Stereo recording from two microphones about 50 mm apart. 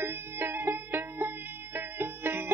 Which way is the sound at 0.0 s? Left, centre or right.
Right.